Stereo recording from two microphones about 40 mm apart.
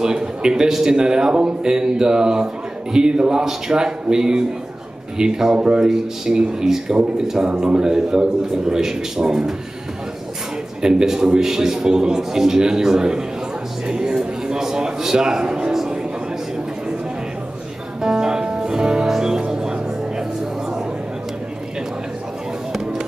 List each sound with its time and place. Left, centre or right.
0.0 s a man's voice: right
10.8 s a man's voice: centre
13.8 s a sound: centre
18.0 s music: centre